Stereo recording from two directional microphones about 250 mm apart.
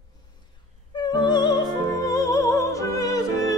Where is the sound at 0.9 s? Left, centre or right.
Centre.